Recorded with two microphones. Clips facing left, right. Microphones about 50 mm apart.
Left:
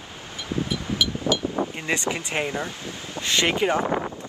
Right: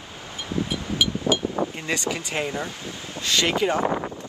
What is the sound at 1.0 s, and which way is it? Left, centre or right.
Wind chime, right.